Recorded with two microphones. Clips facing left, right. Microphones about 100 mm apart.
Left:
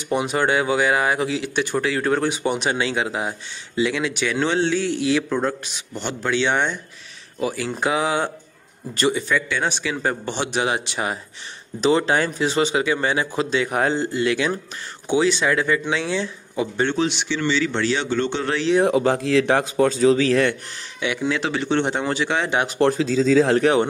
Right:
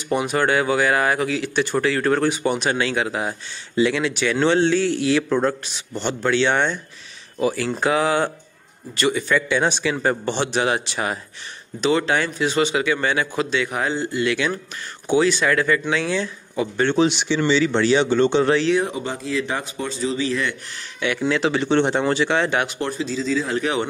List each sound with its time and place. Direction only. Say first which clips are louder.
0.1 s speech: right 1 dB; 20° left (ahead or behind)
9.3 s speech: right 3 dB; centre (ahead or behind)
11.8 s speech: left 1 dB; 30° left (ahead or behind)
15.0 s speech: right 1 dB; 20° left (ahead or behind)
16.9 s speech: right 4 dB; 10° right (ahead or behind)
18.9 s a man's voice: left 8 dB; 90° left
21.2 s speech: right 4 dB; centre (ahead or behind)
22.9 s a man's voice: left 4 dB; 90° left